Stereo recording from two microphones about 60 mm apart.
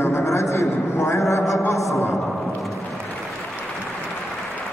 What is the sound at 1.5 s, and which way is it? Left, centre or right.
Speech, left.